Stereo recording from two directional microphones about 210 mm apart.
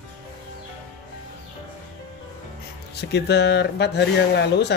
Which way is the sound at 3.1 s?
50° left (ahead or behind).